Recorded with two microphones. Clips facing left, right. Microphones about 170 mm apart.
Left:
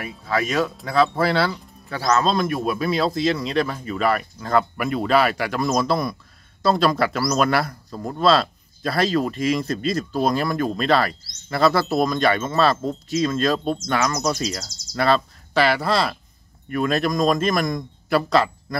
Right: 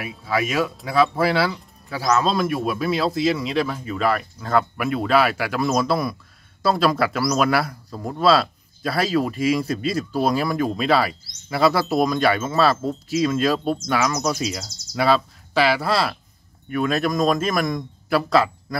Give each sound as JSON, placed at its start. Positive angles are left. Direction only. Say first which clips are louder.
{"t": 0.0, "sound": "speech", "louder": "even", "side_deg": -5}